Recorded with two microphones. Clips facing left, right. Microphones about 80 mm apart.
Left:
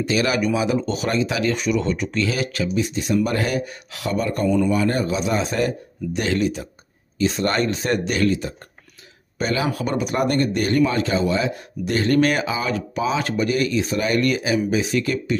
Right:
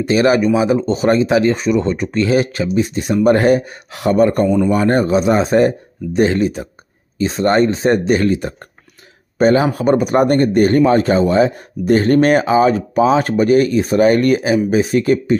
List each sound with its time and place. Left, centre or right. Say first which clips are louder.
0.0 s speech: right 8 dB; right
9.4 s speech: right 10 dB; right